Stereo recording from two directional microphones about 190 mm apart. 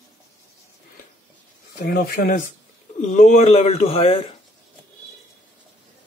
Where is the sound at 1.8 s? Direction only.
50° left (ahead or behind).